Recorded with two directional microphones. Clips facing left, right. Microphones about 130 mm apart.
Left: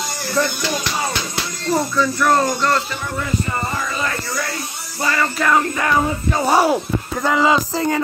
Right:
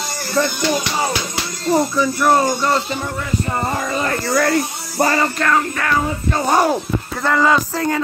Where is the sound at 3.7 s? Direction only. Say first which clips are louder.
Right 3 dB; 50° right (ahead or behind).